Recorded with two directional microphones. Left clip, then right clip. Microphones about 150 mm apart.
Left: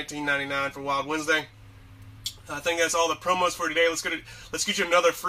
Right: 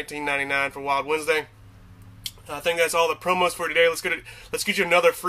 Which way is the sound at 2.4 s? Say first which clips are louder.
Right 3 dB; 30° right (ahead or behind).